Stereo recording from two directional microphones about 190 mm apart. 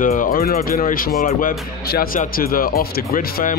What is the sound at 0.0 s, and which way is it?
Speech, 45° left (ahead or behind).